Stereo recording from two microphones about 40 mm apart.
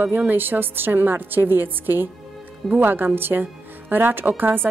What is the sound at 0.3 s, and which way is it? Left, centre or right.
Speech, right.